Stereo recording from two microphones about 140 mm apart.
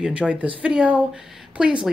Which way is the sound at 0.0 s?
10° right (ahead or behind).